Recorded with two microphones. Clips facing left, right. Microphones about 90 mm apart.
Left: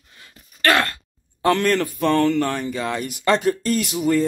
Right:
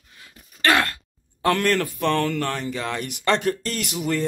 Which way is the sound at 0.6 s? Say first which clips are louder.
Left 1 dB; 15° right (ahead or behind).